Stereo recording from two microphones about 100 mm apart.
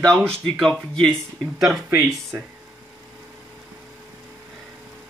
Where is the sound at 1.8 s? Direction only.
25° right (ahead or behind).